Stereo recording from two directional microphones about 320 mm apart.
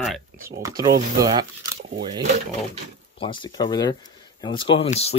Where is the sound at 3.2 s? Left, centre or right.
Centre.